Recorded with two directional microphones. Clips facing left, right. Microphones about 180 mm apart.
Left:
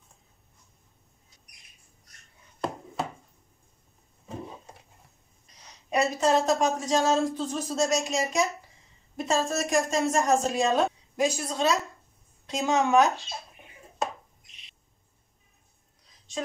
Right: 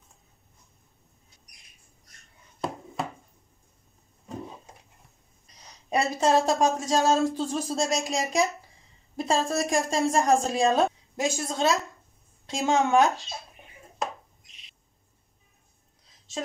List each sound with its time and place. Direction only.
5.9 s a woman's voice: 35° right (ahead or behind)